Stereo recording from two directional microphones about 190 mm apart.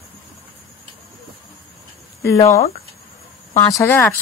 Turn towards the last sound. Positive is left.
turn(degrees=15)  # may be behind; listen again after turning